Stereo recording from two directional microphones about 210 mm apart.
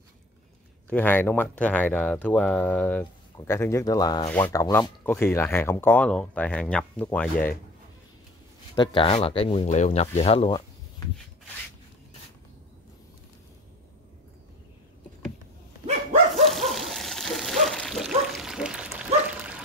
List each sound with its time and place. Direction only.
0.8 s speech: 10° left (ahead or behind)
8.7 s speech: 25° left (ahead or behind)
16.4 s dog: centre (ahead or behind)